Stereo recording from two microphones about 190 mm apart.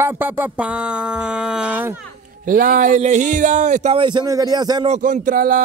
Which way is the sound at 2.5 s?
45° right (ahead or behind).